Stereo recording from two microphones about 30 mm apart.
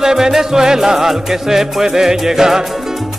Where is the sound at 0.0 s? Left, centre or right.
Centre.